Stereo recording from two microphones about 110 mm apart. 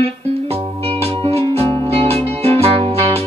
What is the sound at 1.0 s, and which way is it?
Music, 65° right (ahead or behind).